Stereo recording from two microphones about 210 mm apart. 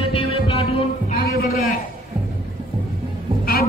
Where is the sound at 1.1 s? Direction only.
45° left (ahead or behind).